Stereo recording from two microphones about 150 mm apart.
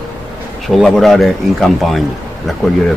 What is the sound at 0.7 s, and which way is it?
Speech, centre (ahead or behind).